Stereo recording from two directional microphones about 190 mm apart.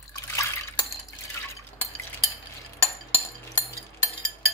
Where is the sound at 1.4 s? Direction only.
15° left (ahead or behind).